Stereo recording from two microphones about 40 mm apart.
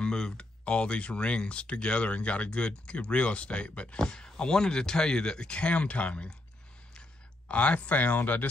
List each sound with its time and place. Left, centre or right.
0.0 s speech: left